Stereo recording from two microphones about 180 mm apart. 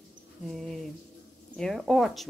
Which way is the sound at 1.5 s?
5° left (ahead or behind).